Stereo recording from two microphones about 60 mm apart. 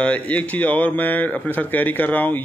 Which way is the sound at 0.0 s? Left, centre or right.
Left.